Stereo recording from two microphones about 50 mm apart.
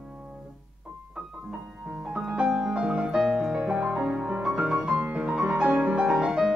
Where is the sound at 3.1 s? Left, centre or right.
Centre.